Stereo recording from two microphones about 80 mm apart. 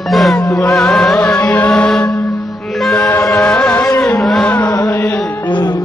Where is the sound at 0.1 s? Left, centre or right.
Centre.